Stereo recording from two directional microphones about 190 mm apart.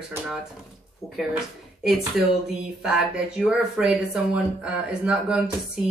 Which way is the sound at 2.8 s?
5° right (ahead or behind).